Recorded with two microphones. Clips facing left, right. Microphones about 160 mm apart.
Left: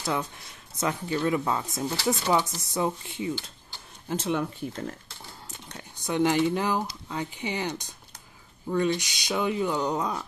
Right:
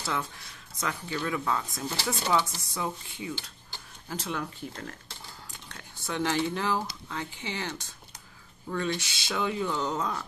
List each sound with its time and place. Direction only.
0.0 s speech: 20° left (ahead or behind)